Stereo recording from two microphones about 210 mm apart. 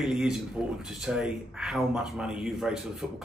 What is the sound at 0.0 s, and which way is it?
A man's voice, centre (ahead or behind).